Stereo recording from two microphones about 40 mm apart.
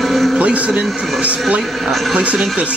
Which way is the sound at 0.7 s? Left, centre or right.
Right.